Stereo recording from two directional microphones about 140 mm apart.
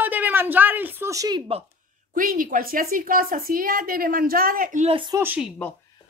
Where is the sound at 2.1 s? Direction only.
80° right.